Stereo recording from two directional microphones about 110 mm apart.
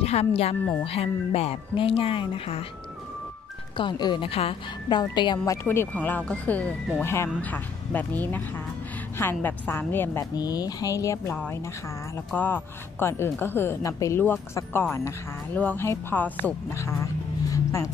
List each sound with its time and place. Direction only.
0.0 s speech: 70° left (ahead or behind)
0.6 s speech: 15° left (ahead or behind)
0.8 s speech: 60° left (ahead or behind)
3.7 s a woman's voice: 45° left (ahead or behind)
5.1 s a woman's voice: 40° left (ahead or behind)
5.5 s speech: 20° left (ahead or behind)
7.0 s speech: 25° left (ahead or behind)
10.3 s speech: 35° left (ahead or behind)
12.4 s speech: 20° left (ahead or behind)